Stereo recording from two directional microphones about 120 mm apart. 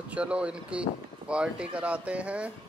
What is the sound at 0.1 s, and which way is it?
Speech, 10° right (ahead or behind).